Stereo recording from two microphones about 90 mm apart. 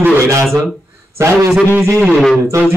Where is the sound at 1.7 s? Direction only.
30° right (ahead or behind).